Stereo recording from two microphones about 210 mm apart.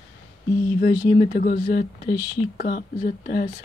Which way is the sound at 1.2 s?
35° left (ahead or behind).